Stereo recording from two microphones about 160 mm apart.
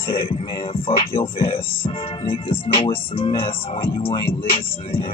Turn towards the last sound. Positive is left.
turn(degrees=35)  # may be behind; listen again after turning